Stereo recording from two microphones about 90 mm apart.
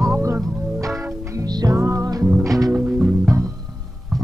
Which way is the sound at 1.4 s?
45° right (ahead or behind).